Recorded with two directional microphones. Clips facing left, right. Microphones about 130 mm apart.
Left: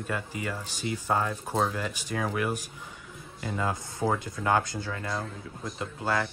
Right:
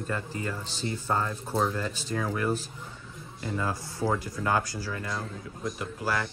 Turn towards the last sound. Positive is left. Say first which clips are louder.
# left 1 dB
turn(degrees=25)  # may be behind; listen again after turning